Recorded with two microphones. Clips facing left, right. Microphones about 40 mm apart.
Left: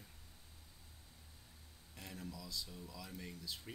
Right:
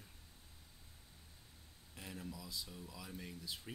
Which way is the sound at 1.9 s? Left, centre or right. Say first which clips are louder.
Right 1 dB; centre.